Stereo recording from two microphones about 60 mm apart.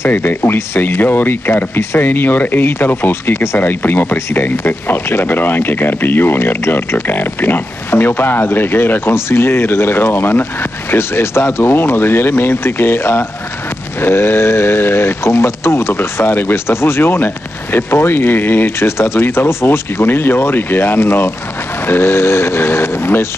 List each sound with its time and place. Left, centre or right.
0.1 s speech: left